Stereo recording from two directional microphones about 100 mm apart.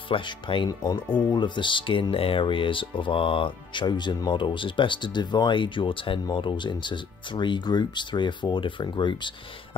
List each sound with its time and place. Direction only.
0.1 s speech: 55° left (ahead or behind)